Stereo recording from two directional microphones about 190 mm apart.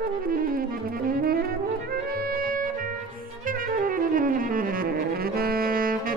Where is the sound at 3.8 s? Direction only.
45° right (ahead or behind).